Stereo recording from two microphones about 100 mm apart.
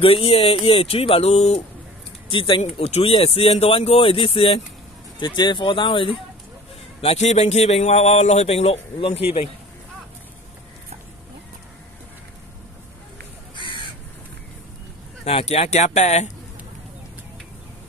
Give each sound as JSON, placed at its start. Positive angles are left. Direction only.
{"t": 0.0, "sound": "speech", "side_deg": 70}
{"t": 2.2, "sound": "speech", "side_deg": 60}
{"t": 5.2, "sound": "speech", "side_deg": 50}
{"t": 7.0, "sound": "a man's voice", "side_deg": 85}
{"t": 15.2, "sound": "a man's voice", "side_deg": 90}